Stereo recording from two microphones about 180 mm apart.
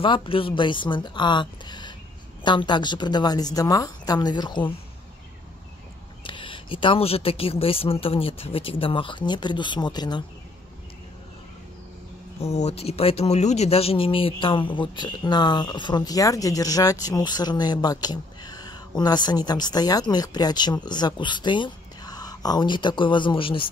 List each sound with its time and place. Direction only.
0.0 s speech: 30° left (ahead or behind)
6.2 s speech: 30° left (ahead or behind)
12.4 s speech: 40° left (ahead or behind)